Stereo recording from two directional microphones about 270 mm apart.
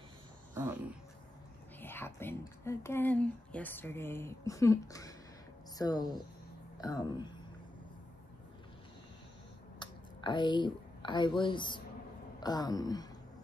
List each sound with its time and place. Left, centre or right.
1.8 s speech: centre
9.8 s a woman's voice: centre